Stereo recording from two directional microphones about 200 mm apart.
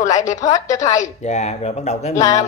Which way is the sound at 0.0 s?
40° left (ahead or behind).